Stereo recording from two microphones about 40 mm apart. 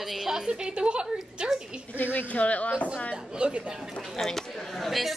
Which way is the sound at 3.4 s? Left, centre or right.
Right.